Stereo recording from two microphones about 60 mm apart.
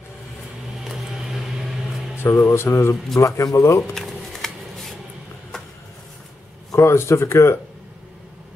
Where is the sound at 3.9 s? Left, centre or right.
Centre.